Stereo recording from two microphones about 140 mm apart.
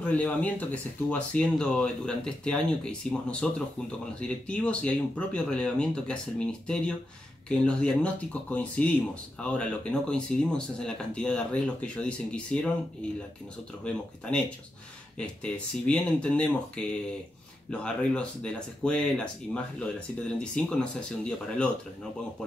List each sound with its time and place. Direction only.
0.0 s speech: 10° left (ahead or behind)
15.1 s speech: 5° left (ahead or behind)